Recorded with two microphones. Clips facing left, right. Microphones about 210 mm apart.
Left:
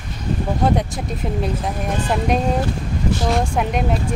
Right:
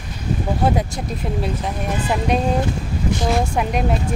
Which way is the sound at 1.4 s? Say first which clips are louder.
Left 1 dB; centre (ahead or behind).